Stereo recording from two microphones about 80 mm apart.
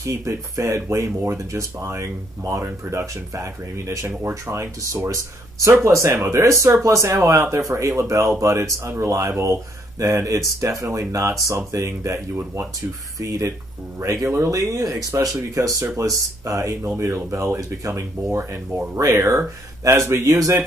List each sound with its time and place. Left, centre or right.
0.0 s speech: right
13.9 s speech: right